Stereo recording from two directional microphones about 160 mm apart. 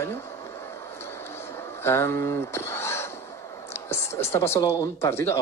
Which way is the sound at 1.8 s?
15° left (ahead or behind).